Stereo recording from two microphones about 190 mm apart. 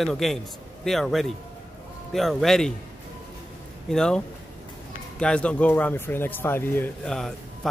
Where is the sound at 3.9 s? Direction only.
5° left (ahead or behind).